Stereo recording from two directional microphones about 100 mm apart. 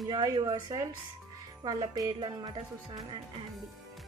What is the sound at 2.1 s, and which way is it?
Speech, 50° right (ahead or behind).